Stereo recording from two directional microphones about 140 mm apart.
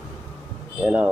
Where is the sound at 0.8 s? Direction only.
10° right (ahead or behind).